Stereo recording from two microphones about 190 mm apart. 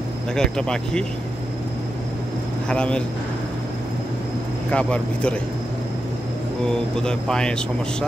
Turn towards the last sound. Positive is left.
turn(degrees=5)  # may be behind; listen again after turning